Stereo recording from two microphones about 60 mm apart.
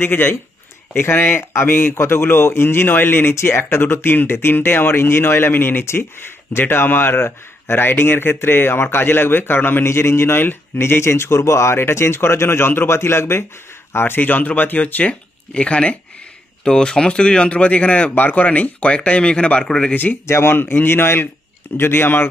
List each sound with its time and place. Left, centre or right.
0.0 s speech: left; by 20.0 s centre
20.2 s speech: left